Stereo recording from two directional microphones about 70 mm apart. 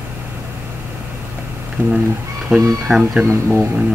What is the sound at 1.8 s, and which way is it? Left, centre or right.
Speech, right.